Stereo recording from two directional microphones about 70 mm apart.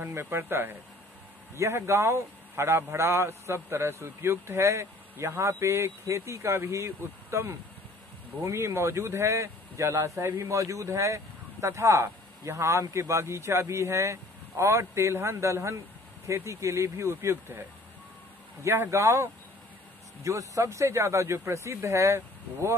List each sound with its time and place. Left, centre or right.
0.0 s a man's voice: right